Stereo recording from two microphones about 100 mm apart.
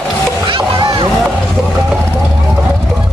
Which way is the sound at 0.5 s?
60° right (ahead or behind).